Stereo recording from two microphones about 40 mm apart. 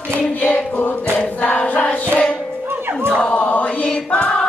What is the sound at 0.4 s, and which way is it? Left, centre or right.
Choir, left.